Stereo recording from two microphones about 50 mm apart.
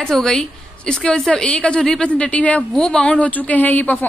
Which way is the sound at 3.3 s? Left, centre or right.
Left.